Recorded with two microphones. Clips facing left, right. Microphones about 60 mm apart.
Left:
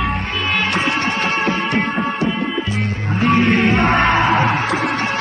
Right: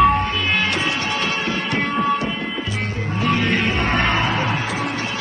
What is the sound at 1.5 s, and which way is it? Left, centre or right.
Music, left.